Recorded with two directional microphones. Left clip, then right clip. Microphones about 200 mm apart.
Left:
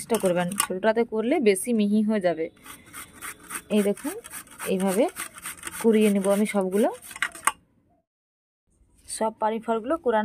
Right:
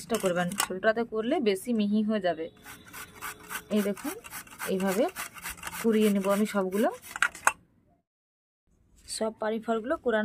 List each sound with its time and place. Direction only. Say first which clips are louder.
0.0 s speech: left 4 dB; 20° left (ahead or behind)
3.7 s speech: left 6 dB; 20° left (ahead or behind)
9.0 s speech: left 5 dB; 15° left (ahead or behind)